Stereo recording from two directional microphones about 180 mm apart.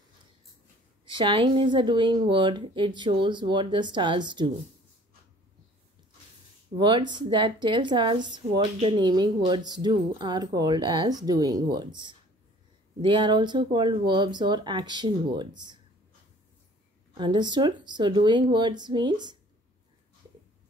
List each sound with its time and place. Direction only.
1.0 s a woman's voice: 25° right (ahead or behind)
6.8 s a woman's voice: 25° right (ahead or behind)
17.2 s a woman's voice: 25° right (ahead or behind)